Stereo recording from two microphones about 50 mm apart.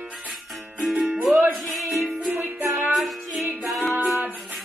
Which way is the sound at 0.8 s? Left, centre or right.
Centre.